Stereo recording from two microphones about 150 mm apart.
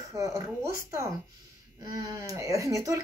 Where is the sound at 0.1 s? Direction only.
20° right (ahead or behind).